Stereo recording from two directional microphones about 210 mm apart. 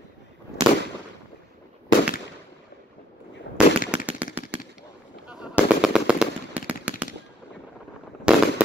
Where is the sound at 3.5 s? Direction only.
60° left (ahead or behind).